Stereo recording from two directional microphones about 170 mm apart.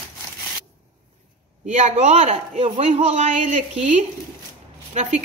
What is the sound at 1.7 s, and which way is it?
A woman's voice, 45° right (ahead or behind).